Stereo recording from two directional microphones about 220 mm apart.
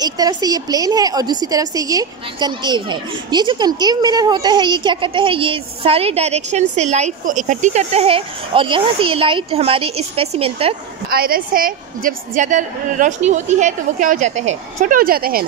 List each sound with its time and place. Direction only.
0.0 s a woman's voice: 15° right (ahead or behind)
11.1 s a woman's voice: 45° right (ahead or behind)